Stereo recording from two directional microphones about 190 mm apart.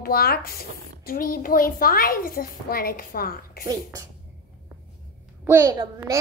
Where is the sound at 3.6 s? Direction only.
20° right (ahead or behind).